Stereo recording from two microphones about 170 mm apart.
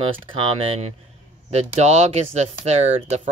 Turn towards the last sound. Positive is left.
turn(degrees=-40)  # may be behind; listen again after turning